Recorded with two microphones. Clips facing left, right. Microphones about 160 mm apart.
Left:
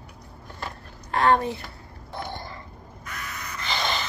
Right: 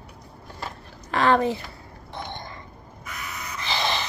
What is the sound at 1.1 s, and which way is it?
Speech, 90° right.